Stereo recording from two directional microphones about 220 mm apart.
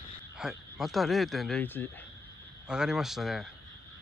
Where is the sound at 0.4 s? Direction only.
Centre (ahead or behind).